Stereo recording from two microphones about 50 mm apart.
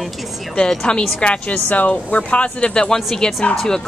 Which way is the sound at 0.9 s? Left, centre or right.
Left.